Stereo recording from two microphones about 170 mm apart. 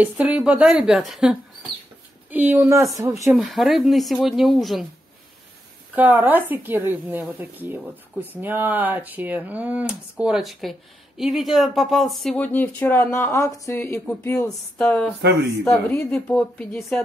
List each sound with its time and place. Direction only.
0.0 s a woman's voice: 10° right (ahead or behind)
3.3 s speech: centre (ahead or behind)
5.9 s a woman's voice: 10° right (ahead or behind); by 17.0 s 10° left (ahead or behind)